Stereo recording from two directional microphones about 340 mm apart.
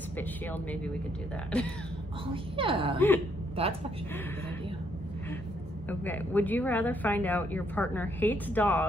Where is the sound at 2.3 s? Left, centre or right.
Centre.